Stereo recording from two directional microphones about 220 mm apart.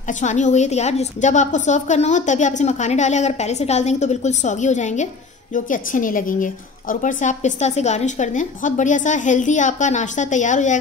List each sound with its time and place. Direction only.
0.2 s a woman's voice: 35° left (ahead or behind)